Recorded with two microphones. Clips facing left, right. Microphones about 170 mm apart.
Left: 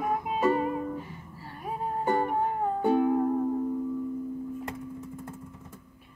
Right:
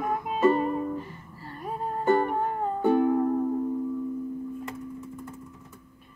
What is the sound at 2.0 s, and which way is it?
Music, 15° left (ahead or behind).